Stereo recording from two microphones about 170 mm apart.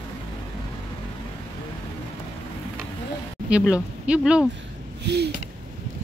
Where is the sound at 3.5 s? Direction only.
5° right (ahead or behind).